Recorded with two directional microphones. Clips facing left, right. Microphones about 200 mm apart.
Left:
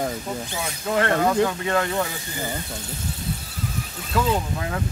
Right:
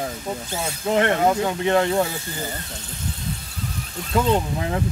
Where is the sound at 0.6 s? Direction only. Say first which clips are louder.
Right 3 dB; 25° right (ahead or behind).